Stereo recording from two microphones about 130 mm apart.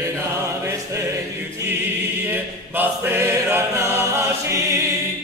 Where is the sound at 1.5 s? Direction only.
15° right (ahead or behind).